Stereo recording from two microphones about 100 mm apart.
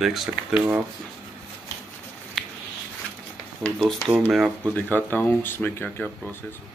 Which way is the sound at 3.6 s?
5° left (ahead or behind).